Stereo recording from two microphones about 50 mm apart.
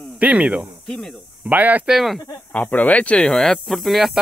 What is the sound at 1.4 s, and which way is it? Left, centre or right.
Speech, right.